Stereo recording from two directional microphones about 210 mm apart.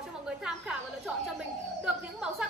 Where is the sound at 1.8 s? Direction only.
5° right (ahead or behind).